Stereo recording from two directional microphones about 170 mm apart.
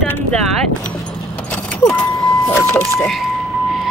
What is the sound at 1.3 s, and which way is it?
Vehicle, 10° left (ahead or behind).